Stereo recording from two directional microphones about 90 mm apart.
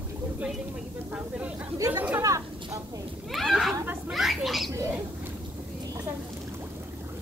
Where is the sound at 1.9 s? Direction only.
20° right (ahead or behind).